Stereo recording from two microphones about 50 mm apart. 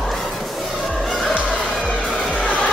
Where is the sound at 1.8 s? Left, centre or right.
Centre.